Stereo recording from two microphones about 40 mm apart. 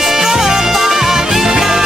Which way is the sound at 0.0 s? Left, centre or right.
Centre.